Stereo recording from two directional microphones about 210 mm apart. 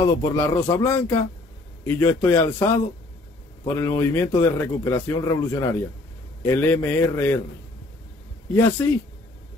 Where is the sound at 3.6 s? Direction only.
10° left (ahead or behind).